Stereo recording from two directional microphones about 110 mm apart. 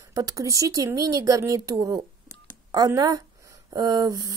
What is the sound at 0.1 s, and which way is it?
Speech, 30° right (ahead or behind).